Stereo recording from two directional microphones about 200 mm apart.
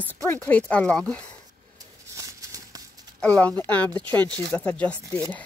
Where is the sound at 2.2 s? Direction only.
15° right (ahead or behind).